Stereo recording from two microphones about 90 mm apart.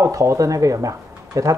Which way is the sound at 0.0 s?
35° right (ahead or behind).